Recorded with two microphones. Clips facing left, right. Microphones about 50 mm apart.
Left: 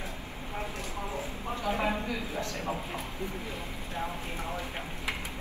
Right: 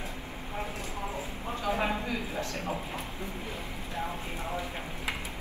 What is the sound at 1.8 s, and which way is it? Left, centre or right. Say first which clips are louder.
Speech: even; right.